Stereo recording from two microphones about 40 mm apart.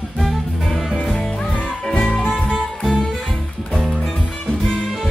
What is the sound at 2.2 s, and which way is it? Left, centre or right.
Music, left.